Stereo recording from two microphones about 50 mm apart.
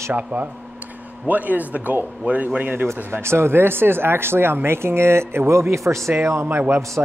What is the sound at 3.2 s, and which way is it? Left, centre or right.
Speech, right.